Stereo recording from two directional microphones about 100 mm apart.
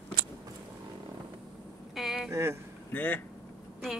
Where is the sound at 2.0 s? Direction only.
5° right (ahead or behind).